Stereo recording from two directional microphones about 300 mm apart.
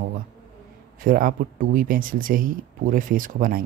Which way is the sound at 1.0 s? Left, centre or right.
Right.